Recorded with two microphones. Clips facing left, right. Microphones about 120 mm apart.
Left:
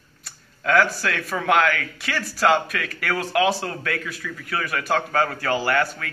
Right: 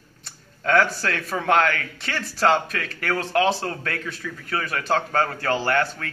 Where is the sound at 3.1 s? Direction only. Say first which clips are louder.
Right 1 dB; 10° left (ahead or behind).